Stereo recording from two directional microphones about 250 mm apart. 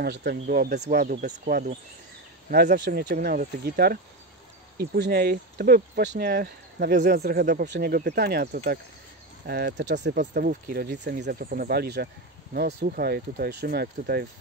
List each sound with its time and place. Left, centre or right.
0.0 s speech: right
9.5 s speech: right